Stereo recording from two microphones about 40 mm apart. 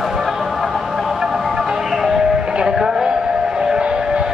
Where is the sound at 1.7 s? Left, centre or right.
Centre.